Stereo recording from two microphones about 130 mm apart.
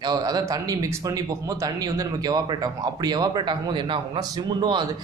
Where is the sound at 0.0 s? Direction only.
30° right (ahead or behind).